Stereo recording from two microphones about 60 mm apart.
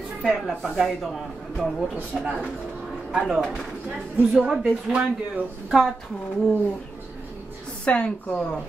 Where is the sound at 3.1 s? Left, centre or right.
Centre.